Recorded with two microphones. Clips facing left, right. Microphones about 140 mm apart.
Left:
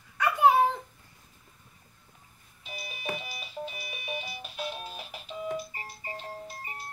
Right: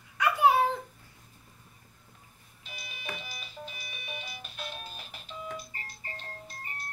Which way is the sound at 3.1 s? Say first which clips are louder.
Left 5 dB; 5° left (ahead or behind).